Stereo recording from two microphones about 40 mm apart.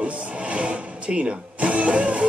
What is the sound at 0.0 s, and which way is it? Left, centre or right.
Music, right.